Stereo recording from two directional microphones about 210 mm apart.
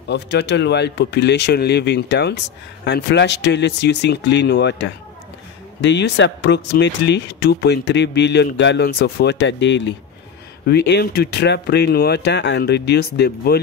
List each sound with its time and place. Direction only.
0.1 s speech: 55° left (ahead or behind)